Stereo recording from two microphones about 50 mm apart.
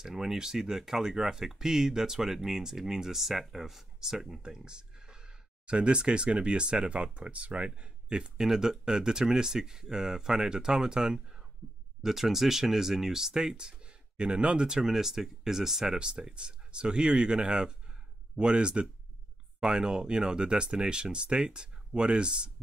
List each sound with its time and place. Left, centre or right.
0.0 s speech: centre